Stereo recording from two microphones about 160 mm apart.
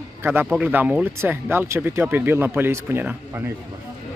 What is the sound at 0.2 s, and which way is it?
Speech, 15° right (ahead or behind).